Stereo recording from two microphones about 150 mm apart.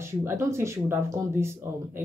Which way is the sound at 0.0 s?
20° right (ahead or behind).